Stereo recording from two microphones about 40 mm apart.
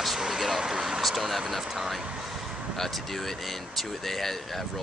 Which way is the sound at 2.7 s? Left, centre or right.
Centre.